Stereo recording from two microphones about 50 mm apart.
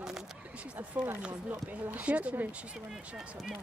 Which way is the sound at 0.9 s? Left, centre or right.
Right.